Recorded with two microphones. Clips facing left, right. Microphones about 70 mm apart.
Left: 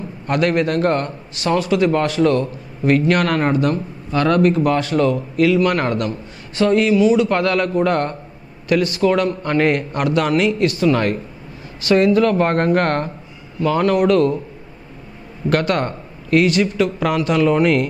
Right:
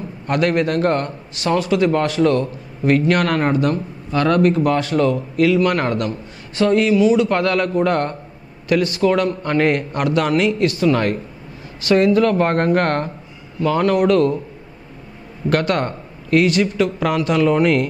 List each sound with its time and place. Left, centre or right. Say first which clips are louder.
0.3 s a man's voice: even; centre
15.5 s a man's voice: even; centre